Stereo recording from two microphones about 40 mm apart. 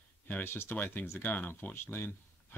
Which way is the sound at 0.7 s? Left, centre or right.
Left.